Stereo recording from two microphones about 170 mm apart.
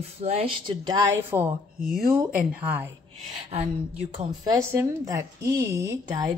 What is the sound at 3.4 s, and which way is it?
Speech, 35° right (ahead or behind).